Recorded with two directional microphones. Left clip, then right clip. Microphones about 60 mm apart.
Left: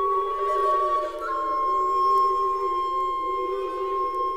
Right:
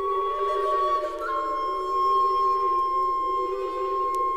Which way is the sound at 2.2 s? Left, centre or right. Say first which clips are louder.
Even; centre.